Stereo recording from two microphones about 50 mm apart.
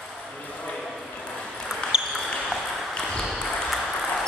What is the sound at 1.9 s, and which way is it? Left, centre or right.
Basketball bounce, centre.